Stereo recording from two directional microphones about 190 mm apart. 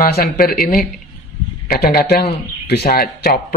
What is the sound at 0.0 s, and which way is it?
Speech, 55° left (ahead or behind).